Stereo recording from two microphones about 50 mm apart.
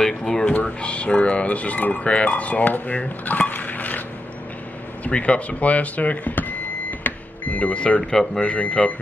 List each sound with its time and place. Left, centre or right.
0.0 s speech: centre
0.5 s speech: left
5.0 s speech: left
8.0 s speech: centre